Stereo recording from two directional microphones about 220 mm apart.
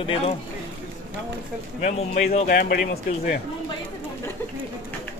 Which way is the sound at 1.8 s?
35° left (ahead or behind).